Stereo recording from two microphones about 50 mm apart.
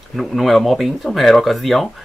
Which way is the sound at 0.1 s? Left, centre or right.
Centre.